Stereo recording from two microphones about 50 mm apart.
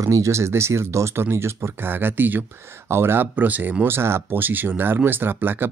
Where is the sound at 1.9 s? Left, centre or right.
Right.